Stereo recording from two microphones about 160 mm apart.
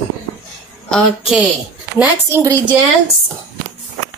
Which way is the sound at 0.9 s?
Centre (ahead or behind).